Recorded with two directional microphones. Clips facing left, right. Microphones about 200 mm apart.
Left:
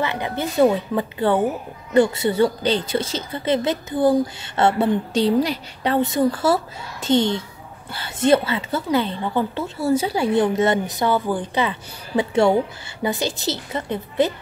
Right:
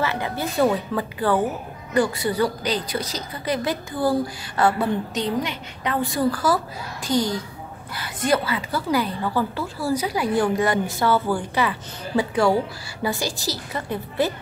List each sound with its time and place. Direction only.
0.0 s a woman's voice: 20° left (ahead or behind)
5.9 s a woman's voice: 20° left (ahead or behind)